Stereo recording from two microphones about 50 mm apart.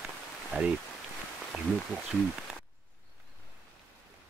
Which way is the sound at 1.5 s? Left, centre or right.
Centre.